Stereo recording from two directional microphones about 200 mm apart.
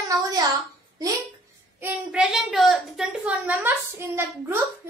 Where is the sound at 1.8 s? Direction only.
5° right (ahead or behind).